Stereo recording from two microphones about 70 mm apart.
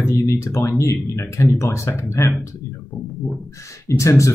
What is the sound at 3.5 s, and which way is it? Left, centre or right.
Speech, left.